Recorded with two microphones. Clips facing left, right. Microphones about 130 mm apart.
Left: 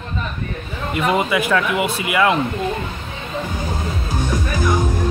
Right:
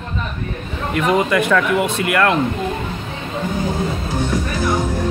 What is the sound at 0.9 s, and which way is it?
Speech, 5° left (ahead or behind).